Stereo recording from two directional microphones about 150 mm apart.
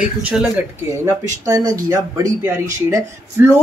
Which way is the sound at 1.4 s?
25° right (ahead or behind).